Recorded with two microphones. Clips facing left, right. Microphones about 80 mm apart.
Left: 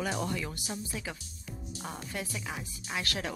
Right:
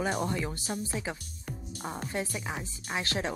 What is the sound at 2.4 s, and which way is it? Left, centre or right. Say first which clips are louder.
Speech: right 3 dB; right.